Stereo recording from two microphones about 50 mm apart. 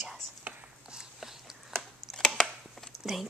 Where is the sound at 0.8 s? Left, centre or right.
Centre.